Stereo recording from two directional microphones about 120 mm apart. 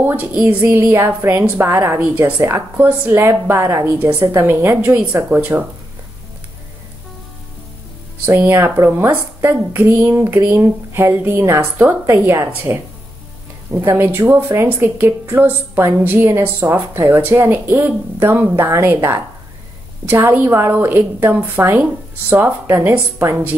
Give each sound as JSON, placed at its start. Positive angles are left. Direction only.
{"t": 0.0, "sound": "a woman's voice", "side_deg": -15}
{"t": 8.4, "sound": "a woman's voice", "side_deg": -15}